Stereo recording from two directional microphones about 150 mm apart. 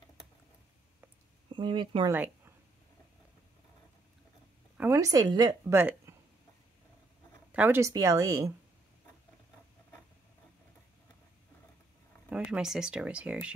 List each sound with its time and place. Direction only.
1.5 s speech: 30° right (ahead or behind)
2.0 s a woman's voice: 15° right (ahead or behind)
4.7 s speech: 20° right (ahead or behind)
5.7 s speech: 15° right (ahead or behind)
7.5 s speech: 15° right (ahead or behind)
12.3 s speech: 5° right (ahead or behind)